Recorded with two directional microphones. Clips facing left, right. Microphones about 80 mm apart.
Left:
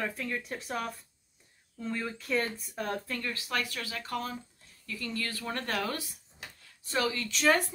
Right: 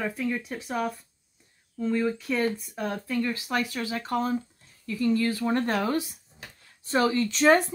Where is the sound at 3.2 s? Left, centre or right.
Centre.